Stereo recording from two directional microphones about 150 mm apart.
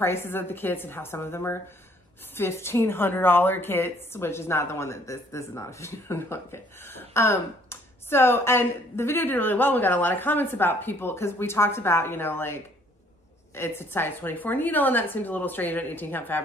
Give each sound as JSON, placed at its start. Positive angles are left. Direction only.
{"t": 0.0, "sound": "a woman's voice", "side_deg": 15}
{"t": 13.6, "sound": "a woman's voice", "side_deg": 15}